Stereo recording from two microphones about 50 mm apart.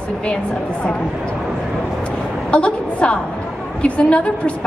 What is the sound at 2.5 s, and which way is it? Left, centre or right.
A woman's voice, left.